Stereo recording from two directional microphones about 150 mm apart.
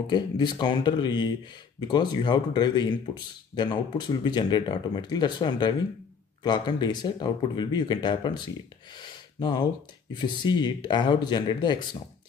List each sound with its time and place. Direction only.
0.0 s speech: 30° left (ahead or behind)
8.9 s a sound: 30° left (ahead or behind)
10.1 s speech: 30° left (ahead or behind)